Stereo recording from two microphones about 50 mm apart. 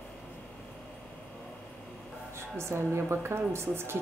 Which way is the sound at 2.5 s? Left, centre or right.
Right.